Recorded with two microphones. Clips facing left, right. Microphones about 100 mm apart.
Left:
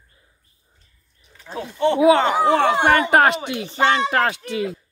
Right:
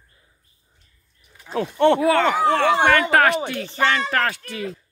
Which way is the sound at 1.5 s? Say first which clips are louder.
Right 3 dB; 65° right (ahead or behind).